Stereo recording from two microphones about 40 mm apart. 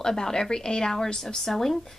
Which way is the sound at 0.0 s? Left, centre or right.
Centre.